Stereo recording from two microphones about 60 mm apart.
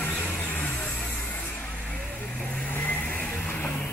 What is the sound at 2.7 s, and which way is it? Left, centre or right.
Vehicle, left.